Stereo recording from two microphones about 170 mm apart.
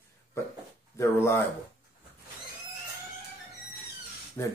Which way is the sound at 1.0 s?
15° left (ahead or behind).